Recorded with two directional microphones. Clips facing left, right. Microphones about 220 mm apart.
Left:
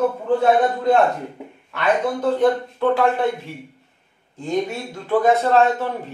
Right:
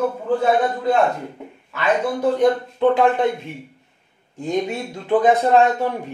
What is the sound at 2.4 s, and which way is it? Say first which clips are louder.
Speech: right 2 dB; 20° right (ahead or behind).